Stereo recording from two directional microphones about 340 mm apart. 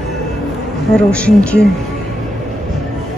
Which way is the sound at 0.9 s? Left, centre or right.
Centre.